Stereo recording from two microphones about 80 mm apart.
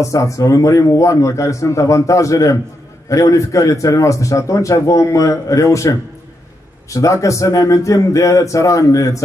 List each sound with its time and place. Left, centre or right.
0.0 s a man's voice: left